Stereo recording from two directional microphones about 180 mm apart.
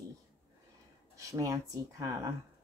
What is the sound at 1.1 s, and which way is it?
Speech, 20° right (ahead or behind).